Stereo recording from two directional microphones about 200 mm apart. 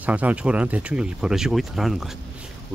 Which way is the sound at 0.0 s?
5° right (ahead or behind).